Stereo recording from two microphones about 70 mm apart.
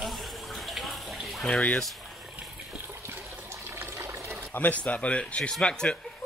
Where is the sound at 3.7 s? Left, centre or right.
Right.